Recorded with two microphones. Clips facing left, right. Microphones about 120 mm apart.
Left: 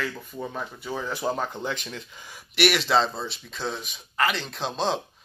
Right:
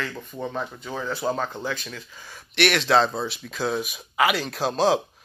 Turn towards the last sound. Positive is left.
turn(degrees=-5)  # may be behind; listen again after turning